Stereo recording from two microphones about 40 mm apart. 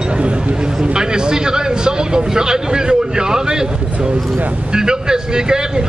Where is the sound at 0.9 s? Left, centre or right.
Centre.